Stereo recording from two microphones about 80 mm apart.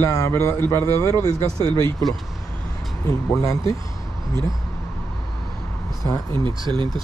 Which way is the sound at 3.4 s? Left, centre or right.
Left.